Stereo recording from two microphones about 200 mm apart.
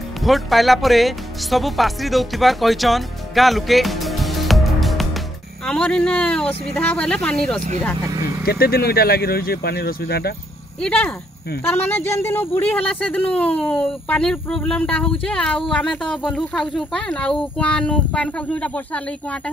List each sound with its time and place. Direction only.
0.2 s speech: centre (ahead or behind)
8.5 s speech: 50° left (ahead or behind)
10.8 s speech: 5° left (ahead or behind)